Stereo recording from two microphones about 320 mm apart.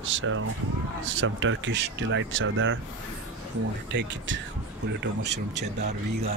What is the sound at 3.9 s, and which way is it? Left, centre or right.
Speech, right.